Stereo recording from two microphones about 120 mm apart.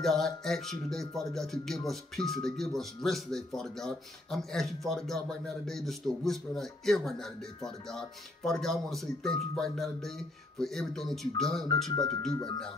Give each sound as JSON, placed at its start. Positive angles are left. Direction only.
{"t": 0.0, "sound": "speech", "side_deg": 5}
{"t": 12.3, "sound": "speech", "side_deg": 35}